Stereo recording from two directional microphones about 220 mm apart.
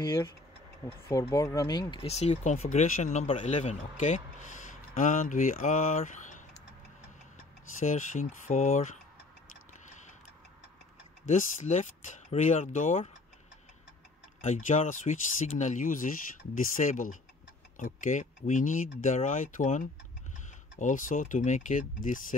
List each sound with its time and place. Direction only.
1.3 s speech: 15° left (ahead or behind); by 6.4 s 35° left (ahead or behind)
7.8 s speech: 35° left (ahead or behind)
11.2 s speech: 30° left (ahead or behind)
14.4 s speech: 30° left (ahead or behind)